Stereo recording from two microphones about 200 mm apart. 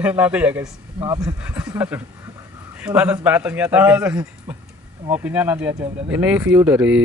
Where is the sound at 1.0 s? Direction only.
20° right (ahead or behind).